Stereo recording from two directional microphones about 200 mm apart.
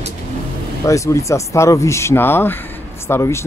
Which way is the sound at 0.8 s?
15° left (ahead or behind).